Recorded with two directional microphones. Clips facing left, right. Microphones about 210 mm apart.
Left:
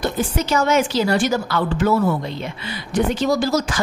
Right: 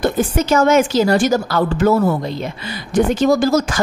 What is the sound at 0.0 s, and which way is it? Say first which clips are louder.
A woman's voice: right 5 dB; 50° right (ahead or behind).